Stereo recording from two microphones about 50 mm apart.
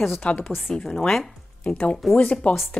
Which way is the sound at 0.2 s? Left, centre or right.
Left.